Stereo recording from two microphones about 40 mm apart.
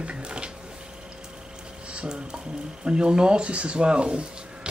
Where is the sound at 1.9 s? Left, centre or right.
Right.